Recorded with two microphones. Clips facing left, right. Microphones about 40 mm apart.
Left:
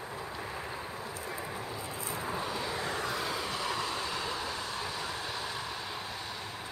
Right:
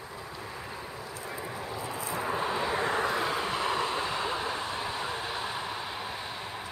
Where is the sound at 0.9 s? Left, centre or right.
Left.